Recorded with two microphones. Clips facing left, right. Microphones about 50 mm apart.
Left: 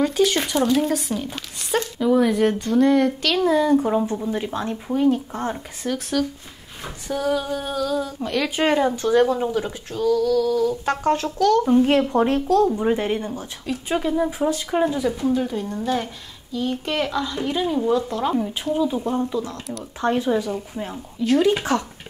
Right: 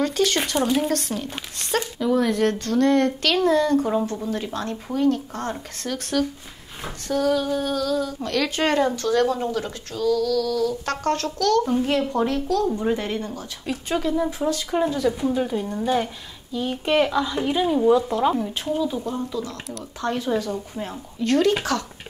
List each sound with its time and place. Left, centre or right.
0.0 s speech: centre
0.7 s speech: centre
12.1 s a woman's voice: left
12.6 s speech: centre
15.1 s speech: centre
18.4 s speech: centre
18.9 s speech: left
20.7 s speech: centre
21.7 s speech: left